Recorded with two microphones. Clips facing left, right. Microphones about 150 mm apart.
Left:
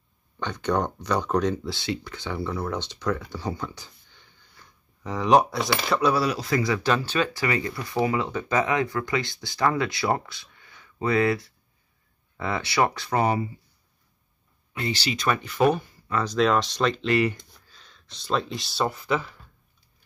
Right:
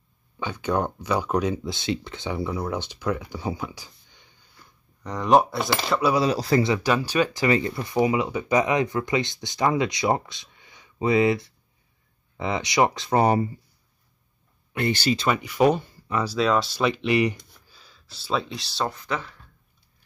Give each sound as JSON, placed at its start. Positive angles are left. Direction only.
{"t": 0.4, "sound": "speech", "side_deg": -5}
{"t": 5.0, "sound": "speech", "side_deg": 0}
{"t": 6.3, "sound": "speech", "side_deg": -35}
{"t": 6.7, "sound": "speech", "side_deg": -15}
{"t": 7.4, "sound": "speech", "side_deg": -25}
{"t": 13.2, "sound": "speech", "side_deg": -40}
{"t": 14.7, "sound": "speech", "side_deg": -55}
{"t": 15.1, "sound": "speech", "side_deg": -15}
{"t": 16.3, "sound": "speech", "side_deg": 0}
{"t": 17.6, "sound": "speech", "side_deg": -5}